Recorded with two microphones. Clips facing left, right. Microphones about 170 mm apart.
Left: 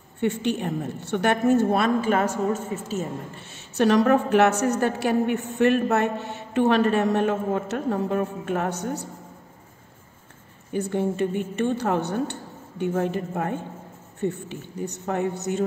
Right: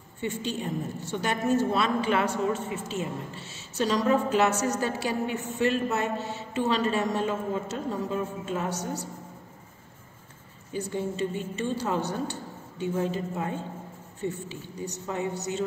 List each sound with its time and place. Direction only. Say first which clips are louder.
0.2 s a woman's voice: left 7 dB; 65° left (ahead or behind)
10.7 s a woman's voice: left 6 dB; 60° left (ahead or behind)